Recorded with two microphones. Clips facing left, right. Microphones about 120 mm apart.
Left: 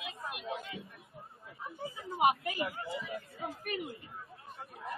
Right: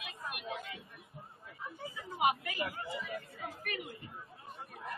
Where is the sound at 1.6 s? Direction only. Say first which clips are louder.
Left 3 dB; 35° left (ahead or behind).